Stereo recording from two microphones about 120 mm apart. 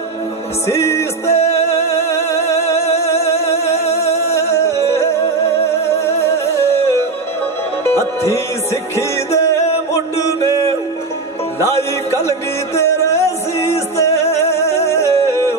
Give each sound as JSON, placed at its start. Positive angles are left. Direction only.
{"t": 0.7, "sound": "music", "side_deg": 25}
{"t": 1.3, "sound": "music", "side_deg": 60}
{"t": 2.0, "sound": "music", "side_deg": 20}
{"t": 4.3, "sound": "music", "side_deg": 20}
{"t": 8.9, "sound": "music", "side_deg": 25}
{"t": 12.2, "sound": "music", "side_deg": 25}